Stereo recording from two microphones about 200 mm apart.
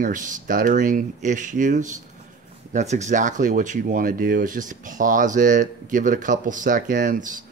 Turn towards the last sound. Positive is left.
turn(degrees=-40)  # may be behind; listen again after turning